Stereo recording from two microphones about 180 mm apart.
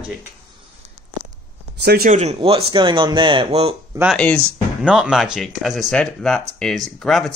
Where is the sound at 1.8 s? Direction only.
60° right (ahead or behind).